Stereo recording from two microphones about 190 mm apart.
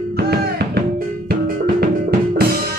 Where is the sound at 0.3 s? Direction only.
55° right (ahead or behind).